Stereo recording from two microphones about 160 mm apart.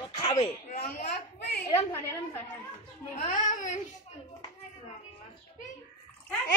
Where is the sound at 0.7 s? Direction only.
50° left (ahead or behind).